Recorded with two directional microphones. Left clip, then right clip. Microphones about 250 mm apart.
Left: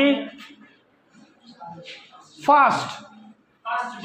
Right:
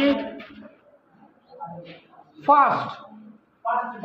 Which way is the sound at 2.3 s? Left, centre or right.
Left.